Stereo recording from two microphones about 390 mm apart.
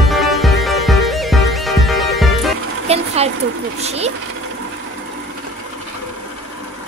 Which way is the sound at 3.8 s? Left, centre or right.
Centre.